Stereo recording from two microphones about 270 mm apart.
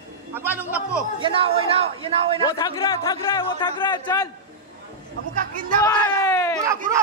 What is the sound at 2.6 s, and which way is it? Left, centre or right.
A man's voice, centre.